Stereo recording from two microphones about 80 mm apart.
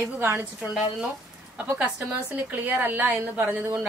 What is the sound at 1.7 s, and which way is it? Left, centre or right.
A woman's voice, centre.